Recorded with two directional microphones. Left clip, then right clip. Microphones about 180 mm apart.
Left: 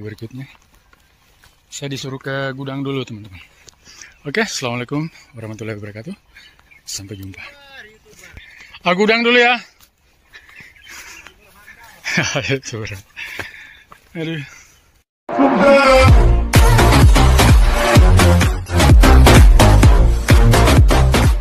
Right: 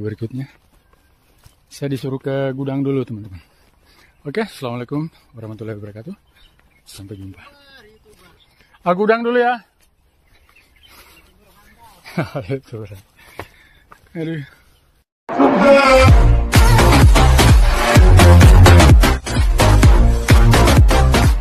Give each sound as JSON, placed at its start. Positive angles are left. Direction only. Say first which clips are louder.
{"t": 0.0, "sound": "speech", "louder": "right 5 dB", "side_deg": -55}
{"t": 1.8, "sound": "speech", "louder": "right 3 dB", "side_deg": -55}
{"t": 3.9, "sound": "a man's voice", "louder": "left 3 dB", "side_deg": 0}
{"t": 7.6, "sound": "dog", "louder": "left 7 dB", "side_deg": -70}
{"t": 8.7, "sound": "a man's voice", "louder": "left 1 dB", "side_deg": 5}
{"t": 12.0, "sound": "speech", "louder": "left 7 dB", "side_deg": 10}
{"t": 14.1, "sound": "speech", "louder": "left 1 dB", "side_deg": -15}
{"t": 15.2, "sound": "music", "louder": "even", "side_deg": 0}
{"t": 20.9, "sound": "music", "louder": "even", "side_deg": 0}